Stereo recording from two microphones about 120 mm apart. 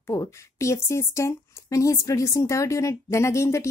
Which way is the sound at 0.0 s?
25° left (ahead or behind).